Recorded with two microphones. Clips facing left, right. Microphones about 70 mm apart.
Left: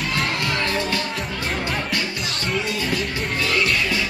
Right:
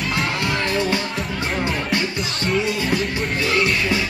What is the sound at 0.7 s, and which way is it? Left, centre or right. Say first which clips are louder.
Music: right 3 dB; right.